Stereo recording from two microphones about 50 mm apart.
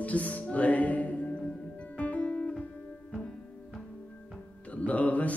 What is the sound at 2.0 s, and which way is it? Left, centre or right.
Guitar, left.